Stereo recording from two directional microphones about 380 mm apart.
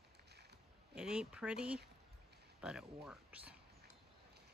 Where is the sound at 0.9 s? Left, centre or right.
Centre.